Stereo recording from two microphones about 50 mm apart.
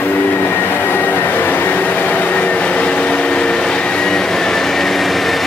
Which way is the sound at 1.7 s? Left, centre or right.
Left.